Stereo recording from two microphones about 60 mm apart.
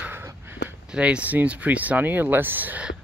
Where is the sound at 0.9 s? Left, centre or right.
Centre.